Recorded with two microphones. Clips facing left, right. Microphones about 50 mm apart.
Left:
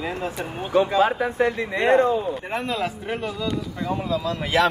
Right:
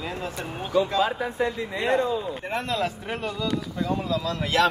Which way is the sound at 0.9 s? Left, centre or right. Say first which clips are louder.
Left 4 dB; left.